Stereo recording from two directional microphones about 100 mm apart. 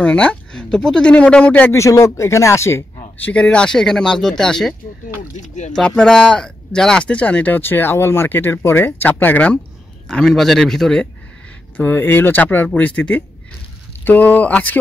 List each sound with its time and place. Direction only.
0.0 s speech: 10° left (ahead or behind)
1.7 s speech: 30° left (ahead or behind)
3.3 s speech: 10° left (ahead or behind)
5.8 s speech: 10° left (ahead or behind)
10.0 s a man's voice: 5° left (ahead or behind)
11.7 s speech: 20° left (ahead or behind)